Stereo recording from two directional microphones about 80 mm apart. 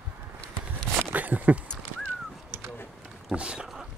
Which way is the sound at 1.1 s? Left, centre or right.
Centre.